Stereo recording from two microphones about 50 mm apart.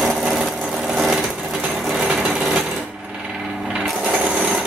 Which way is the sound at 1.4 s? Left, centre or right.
Centre.